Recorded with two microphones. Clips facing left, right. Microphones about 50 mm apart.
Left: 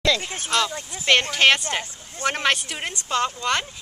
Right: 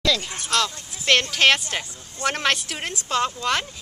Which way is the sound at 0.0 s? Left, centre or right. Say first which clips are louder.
Left 1 dB; centre.